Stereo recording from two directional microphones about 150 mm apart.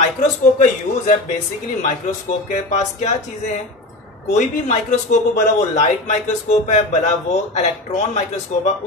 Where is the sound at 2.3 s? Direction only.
55° left (ahead or behind).